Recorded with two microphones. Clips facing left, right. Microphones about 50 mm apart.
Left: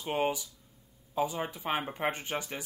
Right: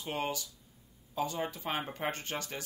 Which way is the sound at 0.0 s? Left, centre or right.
Centre.